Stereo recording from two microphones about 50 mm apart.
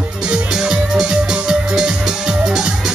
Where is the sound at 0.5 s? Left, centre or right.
Centre.